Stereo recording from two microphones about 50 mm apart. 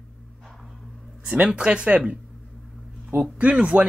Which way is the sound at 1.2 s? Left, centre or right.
Centre.